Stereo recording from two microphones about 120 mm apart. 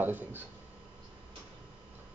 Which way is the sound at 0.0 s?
15° right (ahead or behind).